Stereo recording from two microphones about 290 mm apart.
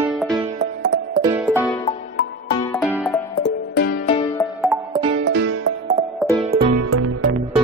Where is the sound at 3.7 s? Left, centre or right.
Left.